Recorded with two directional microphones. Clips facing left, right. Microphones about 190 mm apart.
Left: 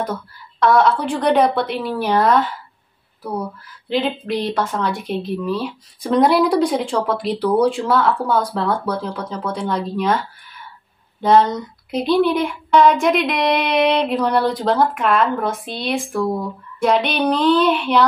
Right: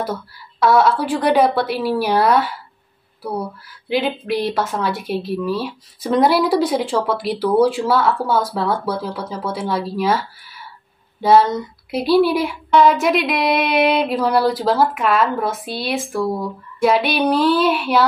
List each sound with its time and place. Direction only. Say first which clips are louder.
0.0 s a woman's voice: even; 5° right (ahead or behind)
3.9 s a woman's voice: right 1 dB; 5° right (ahead or behind)
11.2 s a woman's voice: right 1 dB; 5° right (ahead or behind)